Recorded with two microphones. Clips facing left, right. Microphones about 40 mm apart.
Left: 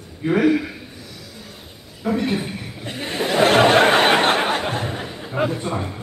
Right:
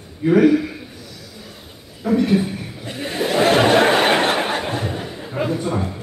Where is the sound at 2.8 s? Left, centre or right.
Left.